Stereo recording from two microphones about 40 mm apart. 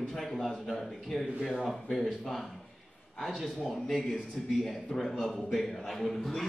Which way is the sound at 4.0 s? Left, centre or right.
Centre.